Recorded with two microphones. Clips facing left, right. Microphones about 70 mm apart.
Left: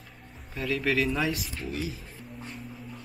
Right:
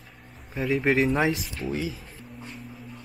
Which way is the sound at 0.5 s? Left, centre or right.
Right.